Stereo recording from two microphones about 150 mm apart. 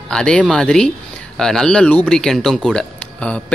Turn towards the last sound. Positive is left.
turn(degrees=5)  # may be behind; listen again after turning